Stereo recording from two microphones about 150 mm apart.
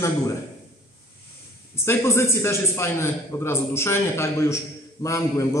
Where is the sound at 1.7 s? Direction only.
15° left (ahead or behind).